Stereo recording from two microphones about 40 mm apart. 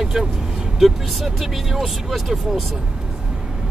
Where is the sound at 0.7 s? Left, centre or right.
Centre.